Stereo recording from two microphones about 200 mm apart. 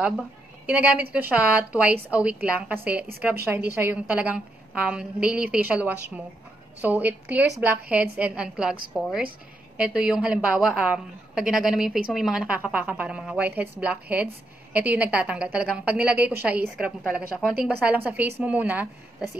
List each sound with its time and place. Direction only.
0.7 s a woman's voice: 5° right (ahead or behind)